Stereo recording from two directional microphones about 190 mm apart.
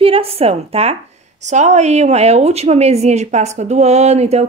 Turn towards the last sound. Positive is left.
turn(degrees=-35)  # may be behind; listen again after turning